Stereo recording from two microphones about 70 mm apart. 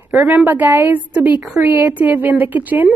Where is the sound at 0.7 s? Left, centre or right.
Right.